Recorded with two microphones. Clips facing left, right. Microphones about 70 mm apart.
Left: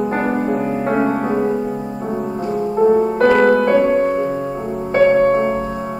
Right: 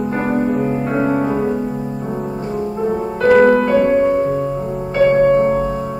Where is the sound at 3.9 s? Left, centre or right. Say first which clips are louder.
Right 2 dB; centre.